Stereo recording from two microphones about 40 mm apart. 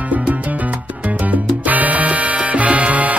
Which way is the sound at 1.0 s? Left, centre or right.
Right.